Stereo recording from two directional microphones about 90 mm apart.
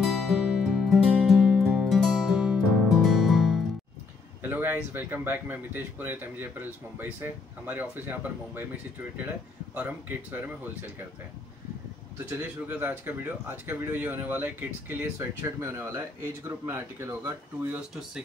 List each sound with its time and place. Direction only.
0.0 s music: centre (ahead or behind)
4.4 s speech: 25° right (ahead or behind)
9.8 s speech: 20° right (ahead or behind)
12.3 s speech: 20° right (ahead or behind)
15.1 s speech: 30° right (ahead or behind)